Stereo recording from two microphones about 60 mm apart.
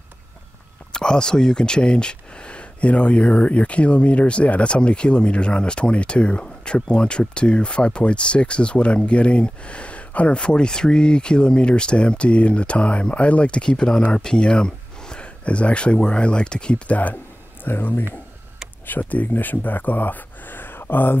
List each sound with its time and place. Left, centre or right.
0.9 s speech: centre
17.6 s speech: left